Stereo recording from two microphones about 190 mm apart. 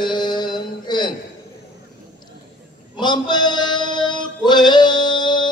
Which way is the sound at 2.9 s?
25° left (ahead or behind).